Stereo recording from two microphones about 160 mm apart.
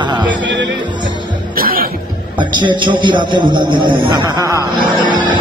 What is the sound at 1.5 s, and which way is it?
Music, 65° right (ahead or behind).